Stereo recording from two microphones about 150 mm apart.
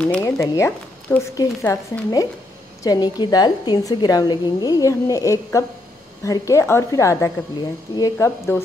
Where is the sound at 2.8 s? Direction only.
30° left (ahead or behind).